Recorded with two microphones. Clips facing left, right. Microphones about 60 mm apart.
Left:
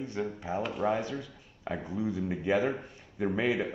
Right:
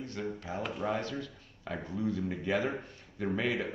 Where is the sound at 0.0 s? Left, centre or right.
Centre.